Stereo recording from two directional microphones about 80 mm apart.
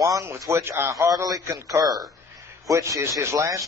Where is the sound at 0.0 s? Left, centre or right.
Right.